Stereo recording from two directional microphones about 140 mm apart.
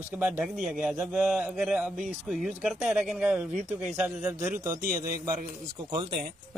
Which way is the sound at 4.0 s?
10° right (ahead or behind).